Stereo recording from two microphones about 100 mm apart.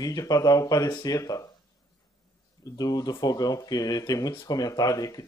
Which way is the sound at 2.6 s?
40° left (ahead or behind).